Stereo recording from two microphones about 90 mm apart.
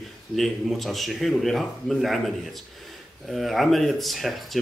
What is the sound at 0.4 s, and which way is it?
Speech, centre (ahead or behind).